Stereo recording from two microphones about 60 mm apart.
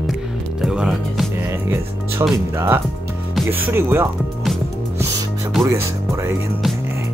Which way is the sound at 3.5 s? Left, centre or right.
Right.